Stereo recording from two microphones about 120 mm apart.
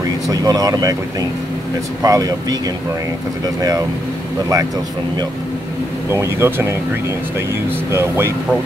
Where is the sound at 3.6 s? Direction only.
30° right (ahead or behind).